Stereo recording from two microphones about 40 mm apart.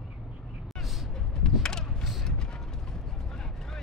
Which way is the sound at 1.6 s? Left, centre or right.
Centre.